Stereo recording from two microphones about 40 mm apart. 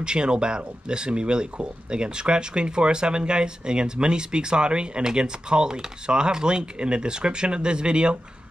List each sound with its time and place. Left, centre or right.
0.0 s speech: right